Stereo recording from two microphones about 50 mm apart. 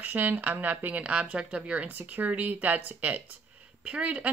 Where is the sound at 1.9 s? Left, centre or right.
Right.